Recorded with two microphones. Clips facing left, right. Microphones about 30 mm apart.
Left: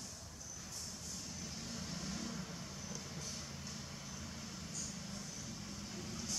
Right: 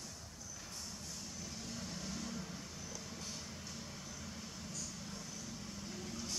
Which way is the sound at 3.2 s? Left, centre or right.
Centre.